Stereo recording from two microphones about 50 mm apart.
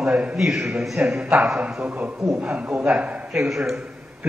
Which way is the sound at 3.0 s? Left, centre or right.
Right.